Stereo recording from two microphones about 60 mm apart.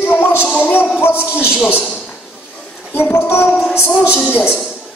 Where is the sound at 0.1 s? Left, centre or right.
Left.